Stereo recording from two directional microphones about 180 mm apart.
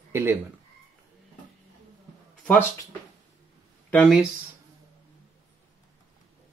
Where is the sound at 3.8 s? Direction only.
5° left (ahead or behind).